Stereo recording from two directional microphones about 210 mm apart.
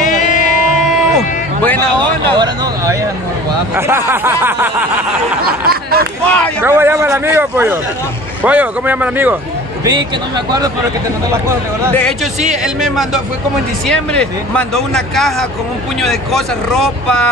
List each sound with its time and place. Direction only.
0.0 s music: 40° left (ahead or behind)
0.8 s a sound: centre (ahead or behind)
2.3 s a sound: 20° right (ahead or behind)
3.7 s a man's voice: 10° right (ahead or behind)
5.7 s a sound: 45° right (ahead or behind)
6.2 s speech: 5° left (ahead or behind)
6.6 s a man's voice: 10° right (ahead or behind)
9.8 s speech: 20° right (ahead or behind)
12.6 s speech: centre (ahead or behind)